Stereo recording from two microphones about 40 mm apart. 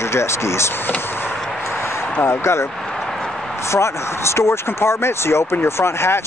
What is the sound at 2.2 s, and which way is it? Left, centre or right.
Speech, left.